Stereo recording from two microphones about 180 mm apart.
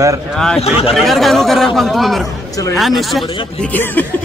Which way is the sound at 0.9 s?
Centre (ahead or behind).